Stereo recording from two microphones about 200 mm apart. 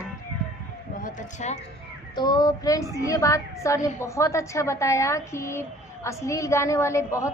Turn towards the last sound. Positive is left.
turn(degrees=15)  # may be behind; listen again after turning